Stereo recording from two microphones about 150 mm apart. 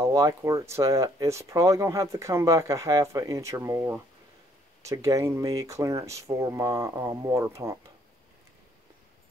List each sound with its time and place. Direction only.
0.0 s speech: 20° right (ahead or behind)